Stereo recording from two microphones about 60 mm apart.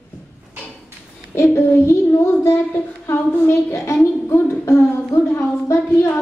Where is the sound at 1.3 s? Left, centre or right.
Left.